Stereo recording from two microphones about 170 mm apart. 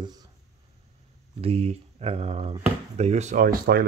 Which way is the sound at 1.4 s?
35° right (ahead or behind).